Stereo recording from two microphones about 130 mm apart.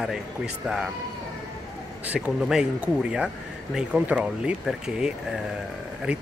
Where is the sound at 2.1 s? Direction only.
5° right (ahead or behind).